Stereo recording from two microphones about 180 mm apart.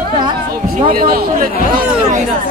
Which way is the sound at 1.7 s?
40° right (ahead or behind).